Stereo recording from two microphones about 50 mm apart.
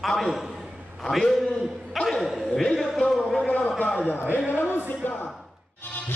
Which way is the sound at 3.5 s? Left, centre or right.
Left.